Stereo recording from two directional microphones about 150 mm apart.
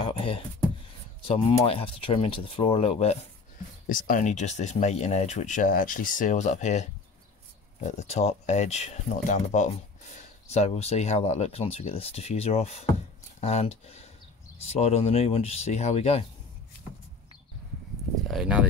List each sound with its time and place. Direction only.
0.0 s a sound: 35° left (ahead or behind)
1.2 s speech: 40° left (ahead or behind)
3.9 s speech: 60° left (ahead or behind); by 16.3 s 40° left (ahead or behind)
18.3 s speech: 5° right (ahead or behind)